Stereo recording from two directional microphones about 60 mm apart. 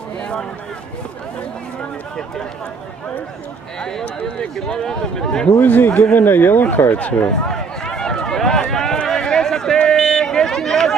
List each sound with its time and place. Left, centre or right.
0.2 s a sound: centre
4.6 s speech: centre
5.6 s a man's voice: left
7.4 s run: centre